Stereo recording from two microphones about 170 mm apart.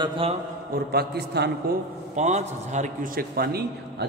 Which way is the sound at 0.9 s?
70° right (ahead or behind).